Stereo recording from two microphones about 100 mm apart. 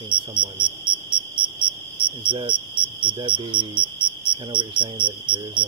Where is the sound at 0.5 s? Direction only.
10° right (ahead or behind).